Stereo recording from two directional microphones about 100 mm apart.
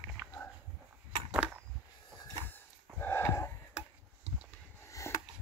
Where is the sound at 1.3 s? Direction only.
10° right (ahead or behind).